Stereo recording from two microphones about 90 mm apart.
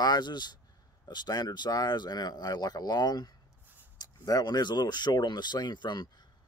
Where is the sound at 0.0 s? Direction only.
50° left (ahead or behind).